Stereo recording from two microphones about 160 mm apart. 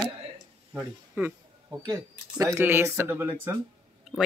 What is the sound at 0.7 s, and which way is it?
Speech, 10° right (ahead or behind).